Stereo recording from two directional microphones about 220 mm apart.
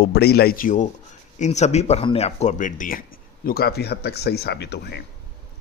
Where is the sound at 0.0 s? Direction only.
45° left (ahead or behind).